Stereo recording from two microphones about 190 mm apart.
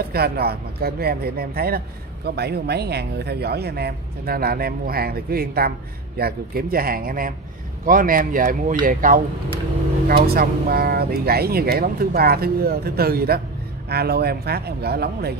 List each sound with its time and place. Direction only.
0.1 s speech: 55° right (ahead or behind)